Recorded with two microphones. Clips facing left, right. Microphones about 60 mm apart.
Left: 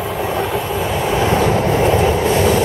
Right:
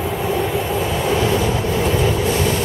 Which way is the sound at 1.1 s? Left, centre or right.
Left.